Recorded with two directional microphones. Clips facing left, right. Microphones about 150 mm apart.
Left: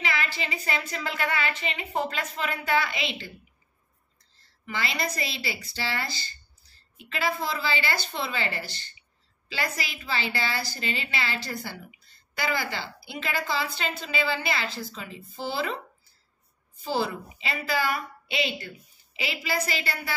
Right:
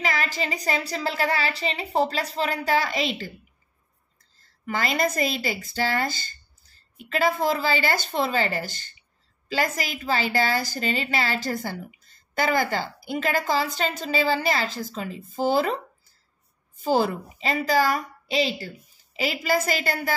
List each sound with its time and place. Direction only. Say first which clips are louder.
0.0 s a woman's voice: right 4 dB; 40° right (ahead or behind)
4.4 s a woman's voice: right 5 dB; 45° right (ahead or behind)